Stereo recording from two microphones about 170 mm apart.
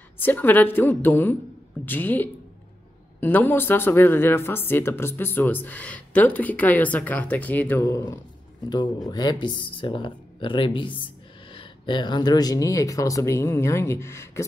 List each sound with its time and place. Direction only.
0.2 s speech: 10° left (ahead or behind)